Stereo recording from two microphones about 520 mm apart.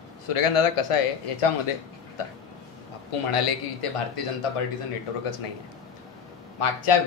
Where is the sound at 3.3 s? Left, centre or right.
Left.